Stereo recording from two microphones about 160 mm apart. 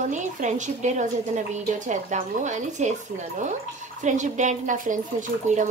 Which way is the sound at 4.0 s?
50° right (ahead or behind).